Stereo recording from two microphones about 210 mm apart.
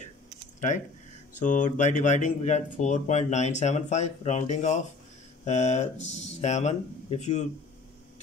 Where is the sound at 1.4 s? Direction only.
35° left (ahead or behind).